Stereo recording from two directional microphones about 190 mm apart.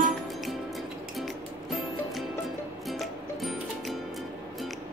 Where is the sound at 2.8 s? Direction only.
Centre (ahead or behind).